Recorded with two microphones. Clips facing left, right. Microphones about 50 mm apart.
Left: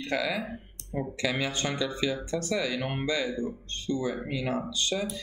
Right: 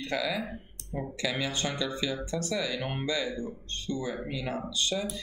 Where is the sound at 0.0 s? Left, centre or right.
Centre.